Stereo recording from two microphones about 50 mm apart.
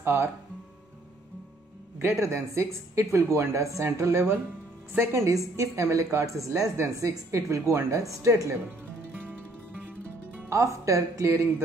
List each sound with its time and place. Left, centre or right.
0.0 s speech: right
2.0 s a woman's voice: right
10.5 s speech: right